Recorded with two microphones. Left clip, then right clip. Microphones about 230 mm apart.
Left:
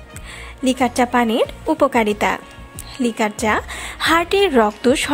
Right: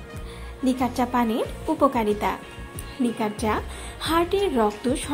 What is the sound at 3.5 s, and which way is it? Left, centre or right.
A woman's voice, left.